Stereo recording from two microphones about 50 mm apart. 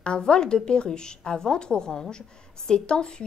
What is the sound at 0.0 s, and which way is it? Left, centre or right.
A woman's voice, centre.